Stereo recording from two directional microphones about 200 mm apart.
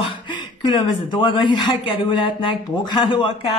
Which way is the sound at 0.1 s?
25° left (ahead or behind).